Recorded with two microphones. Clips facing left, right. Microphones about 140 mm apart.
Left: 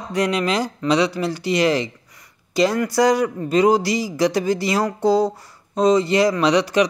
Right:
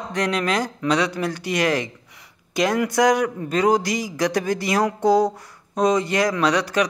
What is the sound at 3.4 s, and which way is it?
Speech, 10° left (ahead or behind).